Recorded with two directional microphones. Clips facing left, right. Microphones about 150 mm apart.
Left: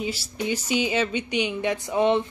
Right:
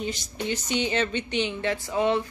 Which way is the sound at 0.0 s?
5° left (ahead or behind).